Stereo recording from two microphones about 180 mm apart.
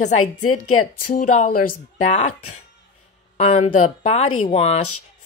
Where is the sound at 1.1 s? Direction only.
45° left (ahead or behind).